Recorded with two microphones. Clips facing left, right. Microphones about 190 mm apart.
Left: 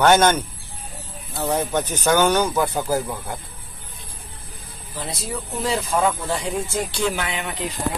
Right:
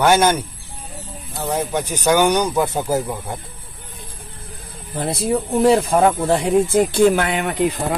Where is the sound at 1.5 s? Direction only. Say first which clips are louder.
Right 1 dB; 10° right (ahead or behind).